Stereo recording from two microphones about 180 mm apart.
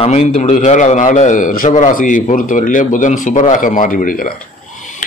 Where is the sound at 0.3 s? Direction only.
40° left (ahead or behind).